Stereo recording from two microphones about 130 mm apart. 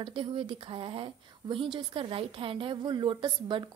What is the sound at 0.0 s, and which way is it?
A woman's voice, 40° right (ahead or behind).